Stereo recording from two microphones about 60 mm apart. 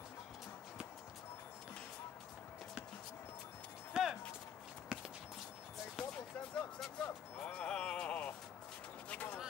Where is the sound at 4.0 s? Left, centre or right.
Centre.